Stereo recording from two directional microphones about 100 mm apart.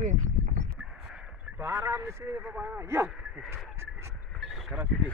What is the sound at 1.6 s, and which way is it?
Speech, 25° right (ahead or behind).